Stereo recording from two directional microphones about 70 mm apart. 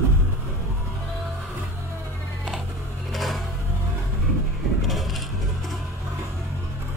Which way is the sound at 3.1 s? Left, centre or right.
Centre.